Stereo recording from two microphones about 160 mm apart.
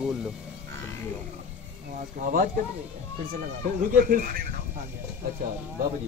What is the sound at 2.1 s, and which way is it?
Speech, 65° right (ahead or behind).